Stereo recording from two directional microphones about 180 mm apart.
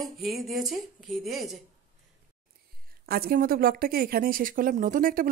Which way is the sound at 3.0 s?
55° right (ahead or behind).